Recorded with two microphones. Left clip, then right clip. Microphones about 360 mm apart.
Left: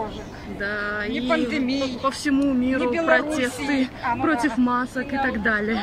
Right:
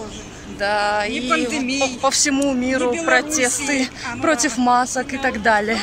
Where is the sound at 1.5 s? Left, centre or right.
Left.